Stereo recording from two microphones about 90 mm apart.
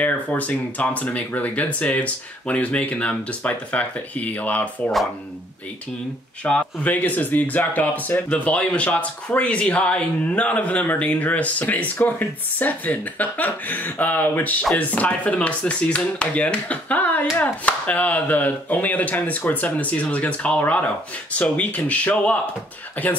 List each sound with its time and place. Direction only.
0.0 s speech: 15° left (ahead or behind)
6.4 s speech: 15° left (ahead or behind)